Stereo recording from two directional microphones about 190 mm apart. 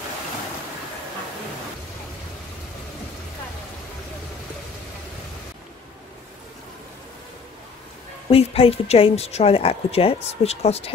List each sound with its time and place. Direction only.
8.3 s a woman's voice: 30° left (ahead or behind)